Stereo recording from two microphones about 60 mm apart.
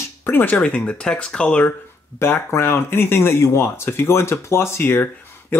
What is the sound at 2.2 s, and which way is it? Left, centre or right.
Speech, left.